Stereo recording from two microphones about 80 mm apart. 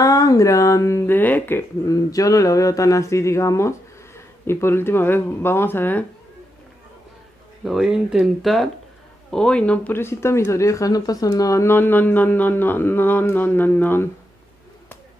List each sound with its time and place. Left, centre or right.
0.0 s speech: left
1.1 s a sound: left
1.9 s speech: left
7.6 s speech: centre
9.3 s speech: centre
9.9 s speech: left
11.6 s a sound: left